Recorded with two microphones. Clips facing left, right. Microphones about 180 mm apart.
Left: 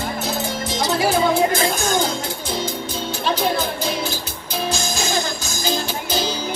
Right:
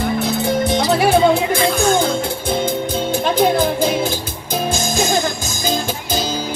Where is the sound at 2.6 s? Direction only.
50° right (ahead or behind).